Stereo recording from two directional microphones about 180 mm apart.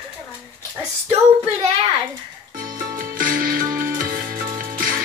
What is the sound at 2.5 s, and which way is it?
Music, 50° right (ahead or behind).